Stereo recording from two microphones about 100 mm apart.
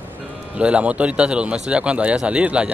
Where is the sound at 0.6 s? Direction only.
10° right (ahead or behind).